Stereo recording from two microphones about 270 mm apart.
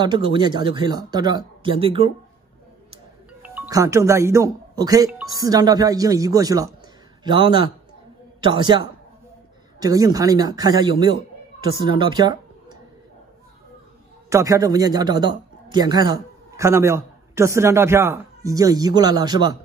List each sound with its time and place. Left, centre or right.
0.0 s a man's voice: centre
3.4 s a man's voice: centre
14.3 s a man's voice: centre